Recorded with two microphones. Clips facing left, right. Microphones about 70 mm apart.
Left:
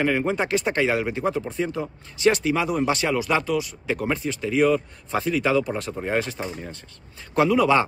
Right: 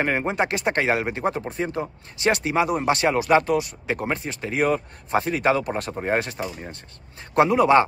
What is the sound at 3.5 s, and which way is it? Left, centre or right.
A man's voice, right.